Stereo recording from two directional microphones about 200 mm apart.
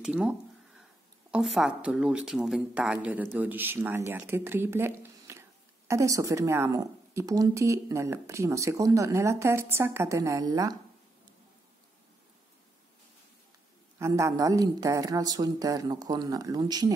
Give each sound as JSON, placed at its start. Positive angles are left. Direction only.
{"t": 0.0, "sound": "a sound", "side_deg": -5}
{"t": 1.3, "sound": "speech", "side_deg": 0}
{"t": 13.9, "sound": "speech", "side_deg": -15}